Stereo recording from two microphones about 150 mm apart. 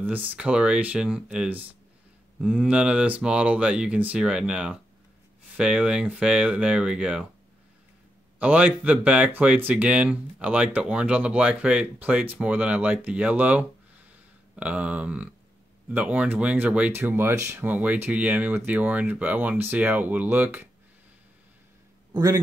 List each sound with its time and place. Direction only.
0.0 s speech: 10° right (ahead or behind)
8.4 s speech: 10° right (ahead or behind)
22.1 s a man's voice: 25° right (ahead or behind)